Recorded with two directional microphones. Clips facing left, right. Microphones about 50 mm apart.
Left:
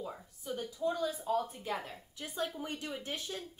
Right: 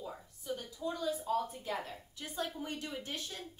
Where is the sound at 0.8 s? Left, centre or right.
Left.